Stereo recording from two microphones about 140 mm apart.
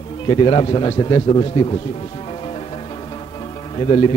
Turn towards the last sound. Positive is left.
turn(degrees=35)  # may be behind; listen again after turning